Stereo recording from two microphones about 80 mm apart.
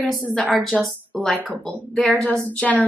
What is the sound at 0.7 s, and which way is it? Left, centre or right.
Speech, centre.